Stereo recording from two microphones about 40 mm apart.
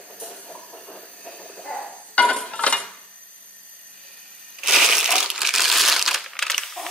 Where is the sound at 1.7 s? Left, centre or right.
Left.